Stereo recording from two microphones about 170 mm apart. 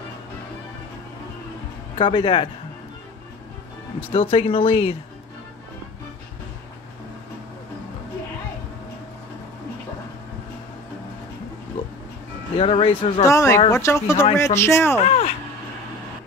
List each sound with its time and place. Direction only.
2.0 s speech: 30° left (ahead or behind)
4.1 s speech: 35° left (ahead or behind)
12.5 s speech: 35° left (ahead or behind)
13.2 s speech: 15° left (ahead or behind)
15.0 s speech: 40° left (ahead or behind)